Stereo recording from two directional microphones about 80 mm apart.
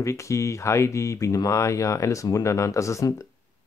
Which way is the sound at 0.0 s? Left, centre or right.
Left.